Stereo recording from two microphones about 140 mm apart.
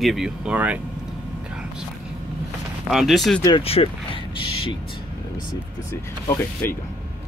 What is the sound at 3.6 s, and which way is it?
Speech, 45° left (ahead or behind).